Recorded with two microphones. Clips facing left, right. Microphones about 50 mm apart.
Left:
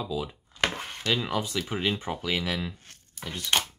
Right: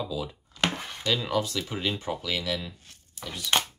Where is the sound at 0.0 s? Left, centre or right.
Centre.